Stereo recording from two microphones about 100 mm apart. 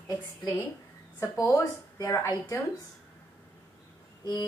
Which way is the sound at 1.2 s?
30° left (ahead or behind).